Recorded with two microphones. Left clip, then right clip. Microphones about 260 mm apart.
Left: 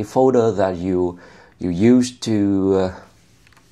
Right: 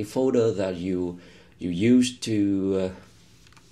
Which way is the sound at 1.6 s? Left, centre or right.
Left.